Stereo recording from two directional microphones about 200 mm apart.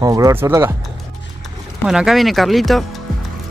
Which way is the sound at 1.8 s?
Centre (ahead or behind).